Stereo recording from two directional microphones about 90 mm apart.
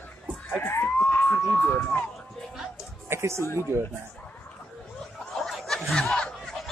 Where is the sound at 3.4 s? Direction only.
30° left (ahead or behind).